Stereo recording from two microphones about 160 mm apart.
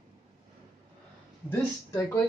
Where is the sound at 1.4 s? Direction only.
20° left (ahead or behind).